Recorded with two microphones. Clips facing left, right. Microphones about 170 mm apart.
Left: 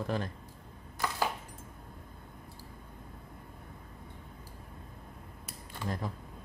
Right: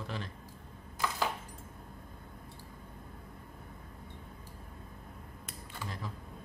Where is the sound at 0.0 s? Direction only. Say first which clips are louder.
Left 7 dB; 45° left (ahead or behind).